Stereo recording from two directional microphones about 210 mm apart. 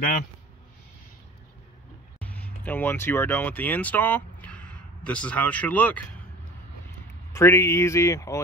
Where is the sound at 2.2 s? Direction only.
5° left (ahead or behind).